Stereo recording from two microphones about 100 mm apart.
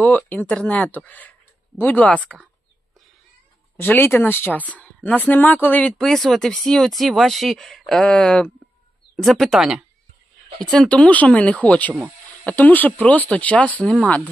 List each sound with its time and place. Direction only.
0.0 s speech: 15° left (ahead or behind)
3.7 s speech: 20° left (ahead or behind)
5.9 s speech: 5° left (ahead or behind)
10.7 s speech: 10° left (ahead or behind)